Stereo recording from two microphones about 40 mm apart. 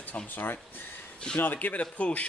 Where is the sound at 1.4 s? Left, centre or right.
Left.